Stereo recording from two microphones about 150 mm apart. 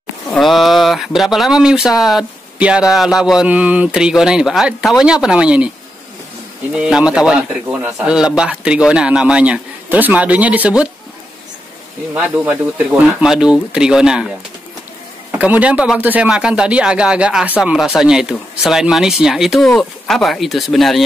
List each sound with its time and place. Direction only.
0.3 s speech: centre (ahead or behind)
6.7 s a man's voice: 5° right (ahead or behind)
12.1 s speech: 10° right (ahead or behind)
15.3 s a man's voice: 10° right (ahead or behind)